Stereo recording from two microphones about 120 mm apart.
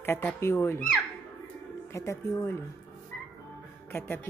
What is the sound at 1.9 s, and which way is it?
Speech, 25° left (ahead or behind).